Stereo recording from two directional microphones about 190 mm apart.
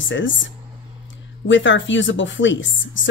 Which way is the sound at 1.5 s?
75° left (ahead or behind).